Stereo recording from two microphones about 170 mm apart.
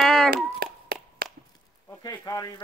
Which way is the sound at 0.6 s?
65° right (ahead or behind).